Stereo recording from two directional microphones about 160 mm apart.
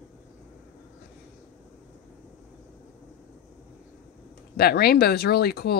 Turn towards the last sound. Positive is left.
turn(degrees=80)